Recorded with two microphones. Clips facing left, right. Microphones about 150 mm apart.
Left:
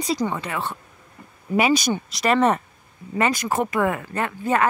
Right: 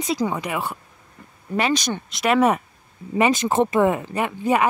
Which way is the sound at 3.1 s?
20° right (ahead or behind).